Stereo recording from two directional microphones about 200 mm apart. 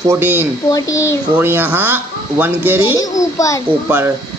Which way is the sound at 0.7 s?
15° left (ahead or behind).